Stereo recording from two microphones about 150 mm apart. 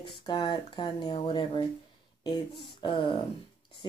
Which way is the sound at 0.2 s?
30° left (ahead or behind).